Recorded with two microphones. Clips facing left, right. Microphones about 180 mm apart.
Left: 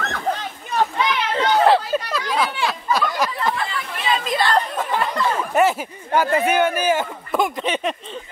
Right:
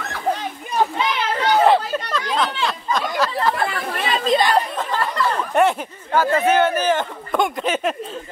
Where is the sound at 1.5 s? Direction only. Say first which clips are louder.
Even; centre (ahead or behind).